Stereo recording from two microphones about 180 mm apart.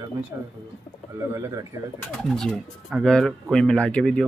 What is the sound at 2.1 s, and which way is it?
Speech, centre (ahead or behind).